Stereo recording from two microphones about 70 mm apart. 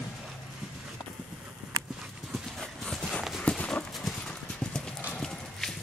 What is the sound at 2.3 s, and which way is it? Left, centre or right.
Clip-clop, centre.